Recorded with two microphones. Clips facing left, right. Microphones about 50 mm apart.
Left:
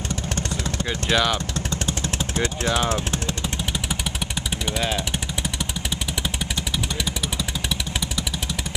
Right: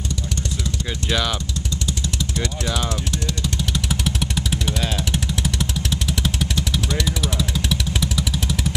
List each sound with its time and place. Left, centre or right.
1.1 s speech: centre
1.9 s vehicle: left
3.7 s vehicle: centre